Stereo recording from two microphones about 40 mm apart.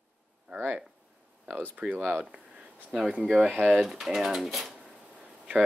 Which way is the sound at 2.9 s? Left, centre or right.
Centre.